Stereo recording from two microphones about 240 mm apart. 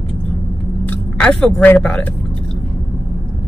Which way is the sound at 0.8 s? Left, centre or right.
Centre.